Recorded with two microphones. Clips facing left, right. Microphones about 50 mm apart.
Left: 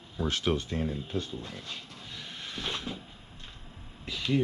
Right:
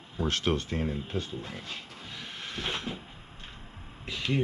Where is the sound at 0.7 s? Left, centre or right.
Right.